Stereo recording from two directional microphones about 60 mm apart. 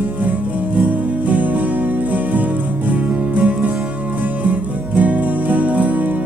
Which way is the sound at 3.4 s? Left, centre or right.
Right.